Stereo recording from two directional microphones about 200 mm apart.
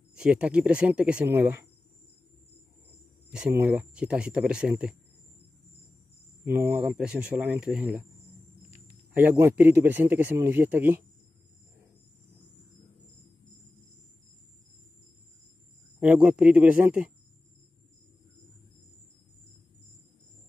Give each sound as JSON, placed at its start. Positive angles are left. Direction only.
{"t": 0.2, "sound": "speech", "side_deg": -5}
{"t": 3.3, "sound": "speech", "side_deg": -5}
{"t": 6.4, "sound": "a man's voice", "side_deg": -10}
{"t": 9.1, "sound": "a man's voice", "side_deg": -10}
{"t": 16.0, "sound": "a man's voice", "side_deg": -5}